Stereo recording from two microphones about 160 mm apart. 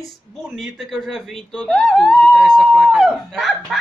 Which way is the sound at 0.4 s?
Centre (ahead or behind).